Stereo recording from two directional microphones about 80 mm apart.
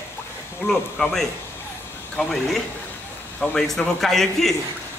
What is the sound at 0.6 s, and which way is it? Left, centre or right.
Speech, left.